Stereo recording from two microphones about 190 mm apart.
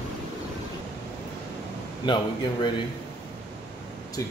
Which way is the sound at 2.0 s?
25° left (ahead or behind).